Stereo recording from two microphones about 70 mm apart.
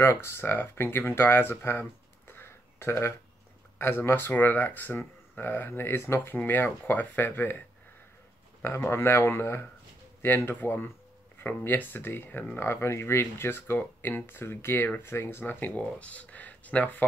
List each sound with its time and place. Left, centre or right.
0.0 s speech: left
8.6 s speech: left